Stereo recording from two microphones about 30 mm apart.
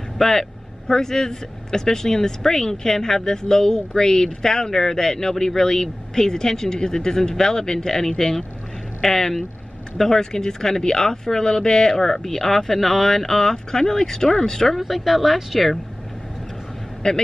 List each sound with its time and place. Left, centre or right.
0.2 s speech: centre
14.7 s speech: centre
17.0 s speech: left